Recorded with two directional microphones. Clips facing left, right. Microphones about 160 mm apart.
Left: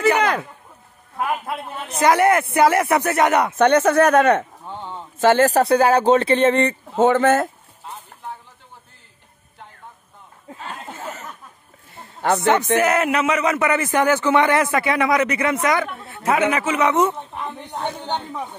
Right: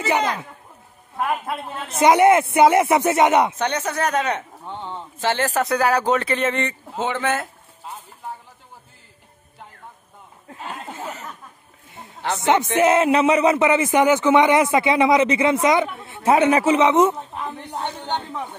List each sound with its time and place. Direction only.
1.1 s a man's voice: centre (ahead or behind)
2.0 s speech: 20° right (ahead or behind)
3.5 s speech: 55° left (ahead or behind)
4.6 s speech: 10° left (ahead or behind)
5.2 s speech: 45° left (ahead or behind)
7.0 s speech: 45° left (ahead or behind)
10.6 s a sound: 10° right (ahead or behind)
12.2 s speech: 55° left (ahead or behind)
12.7 s speech: 25° right (ahead or behind)
16.1 s a man's voice: 35° right (ahead or behind)
16.8 s speech: 20° right (ahead or behind)
18.0 s speech: 10° left (ahead or behind)